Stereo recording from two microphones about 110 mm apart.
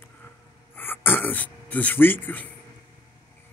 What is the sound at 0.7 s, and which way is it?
Speech, 20° left (ahead or behind).